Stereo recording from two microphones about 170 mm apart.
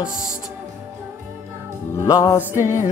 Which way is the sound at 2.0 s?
20° left (ahead or behind).